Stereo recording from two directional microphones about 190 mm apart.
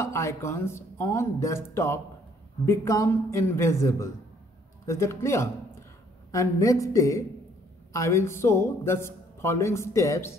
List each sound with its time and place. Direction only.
0.0 s a man's voice: 15° left (ahead or behind)